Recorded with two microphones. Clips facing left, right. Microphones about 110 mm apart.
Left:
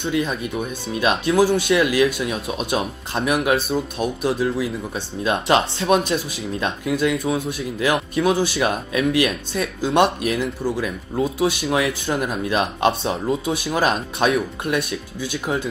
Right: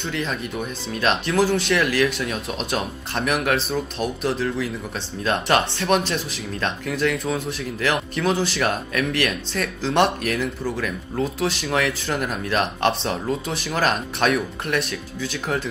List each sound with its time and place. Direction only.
0.4 s speech: 15° left (ahead or behind)
10.2 s speech: 25° left (ahead or behind)